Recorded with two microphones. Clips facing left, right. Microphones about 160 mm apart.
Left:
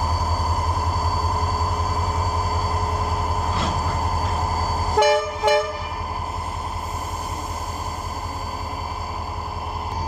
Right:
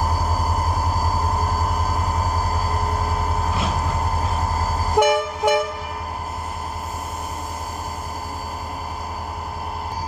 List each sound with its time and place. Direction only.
5.0 s train: 10° right (ahead or behind)